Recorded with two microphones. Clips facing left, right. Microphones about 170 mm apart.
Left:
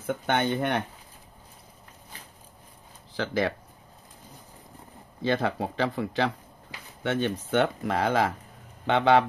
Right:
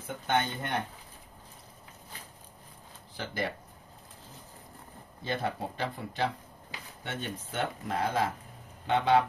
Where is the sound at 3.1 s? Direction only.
90° left.